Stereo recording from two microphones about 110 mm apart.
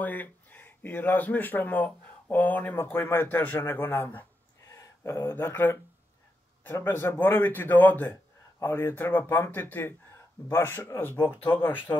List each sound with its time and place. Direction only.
0.0 s a man's voice: 15° left (ahead or behind)
4.6 s a man's voice: 25° left (ahead or behind)